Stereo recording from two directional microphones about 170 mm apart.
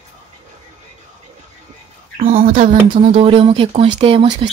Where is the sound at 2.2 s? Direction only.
55° right (ahead or behind).